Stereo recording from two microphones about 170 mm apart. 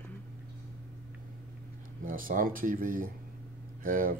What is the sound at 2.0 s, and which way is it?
Speech, 55° right (ahead or behind).